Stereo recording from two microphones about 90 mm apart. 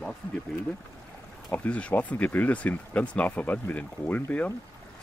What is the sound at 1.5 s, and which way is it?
Speech, 15° left (ahead or behind).